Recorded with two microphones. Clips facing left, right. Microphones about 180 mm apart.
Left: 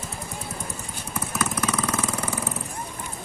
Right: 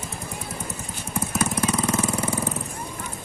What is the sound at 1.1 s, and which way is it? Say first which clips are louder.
Jackhammer: right 3 dB; 30° right (ahead or behind).